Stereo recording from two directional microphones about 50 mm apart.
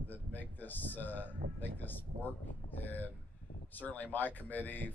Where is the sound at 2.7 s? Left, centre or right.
Left.